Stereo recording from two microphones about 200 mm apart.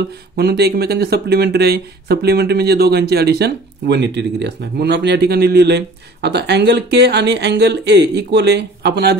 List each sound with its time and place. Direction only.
0.4 s speech: 55° right (ahead or behind)